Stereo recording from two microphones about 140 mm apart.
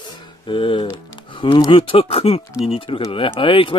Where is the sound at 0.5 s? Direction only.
35° left (ahead or behind).